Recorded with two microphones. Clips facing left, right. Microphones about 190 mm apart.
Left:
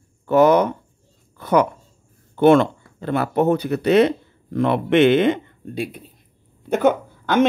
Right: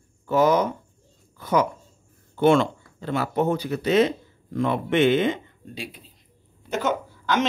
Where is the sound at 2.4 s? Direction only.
55° left (ahead or behind).